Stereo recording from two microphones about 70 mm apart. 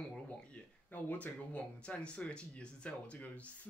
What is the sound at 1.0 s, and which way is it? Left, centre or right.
Speech, left.